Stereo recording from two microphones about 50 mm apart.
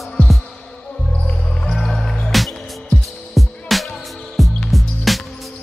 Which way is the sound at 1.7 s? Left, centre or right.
Centre.